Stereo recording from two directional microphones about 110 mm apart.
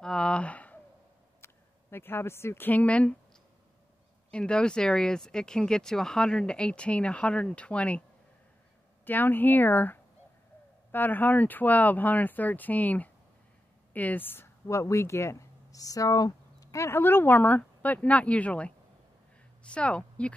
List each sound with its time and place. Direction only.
0.0 s a sound: 5° left (ahead or behind)
1.4 s speech: 20° left (ahead or behind)
4.3 s speech: 10° left (ahead or behind)
9.0 s speech: 15° left (ahead or behind)
19.7 s speech: 10° left (ahead or behind)